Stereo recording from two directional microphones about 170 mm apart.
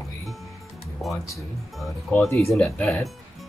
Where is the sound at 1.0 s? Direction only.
Centre (ahead or behind).